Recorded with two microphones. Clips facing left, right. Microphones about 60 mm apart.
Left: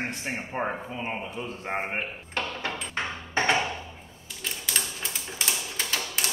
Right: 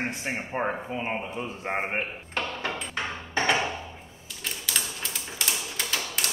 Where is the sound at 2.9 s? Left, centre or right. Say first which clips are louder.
Left 1 dB; left.